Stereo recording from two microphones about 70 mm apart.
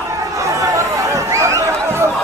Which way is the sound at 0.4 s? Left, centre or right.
Right.